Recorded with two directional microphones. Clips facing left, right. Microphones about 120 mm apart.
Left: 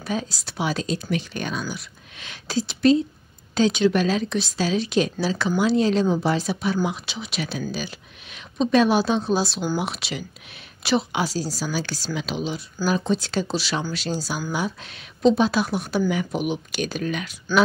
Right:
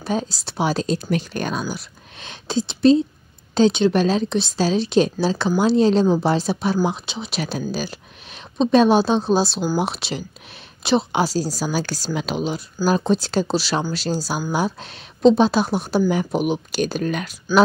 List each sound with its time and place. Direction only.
0.0 s speech: 30° right (ahead or behind)